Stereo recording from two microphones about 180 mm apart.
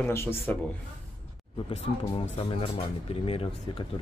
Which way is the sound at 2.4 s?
35° left (ahead or behind).